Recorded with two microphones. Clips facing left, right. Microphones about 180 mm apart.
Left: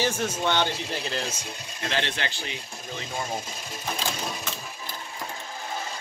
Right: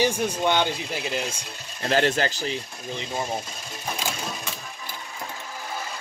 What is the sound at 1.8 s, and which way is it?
Speech, 40° right (ahead or behind).